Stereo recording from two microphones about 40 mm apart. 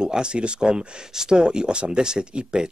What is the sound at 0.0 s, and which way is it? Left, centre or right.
Speech, right.